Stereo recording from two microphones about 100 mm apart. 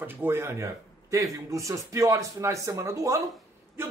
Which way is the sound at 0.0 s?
25° right (ahead or behind).